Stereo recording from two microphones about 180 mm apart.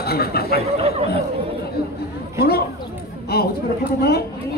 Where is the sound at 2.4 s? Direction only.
60° left (ahead or behind).